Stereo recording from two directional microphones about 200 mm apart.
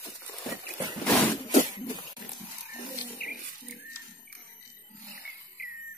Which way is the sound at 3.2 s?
50° left (ahead or behind).